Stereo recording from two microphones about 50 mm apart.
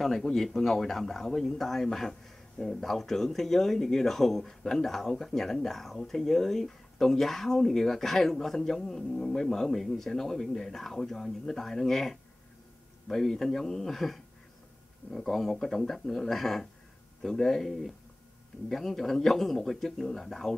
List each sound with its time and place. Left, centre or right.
0.0 s speech: centre